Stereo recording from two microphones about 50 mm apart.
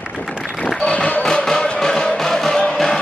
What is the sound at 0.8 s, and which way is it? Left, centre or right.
Music, left.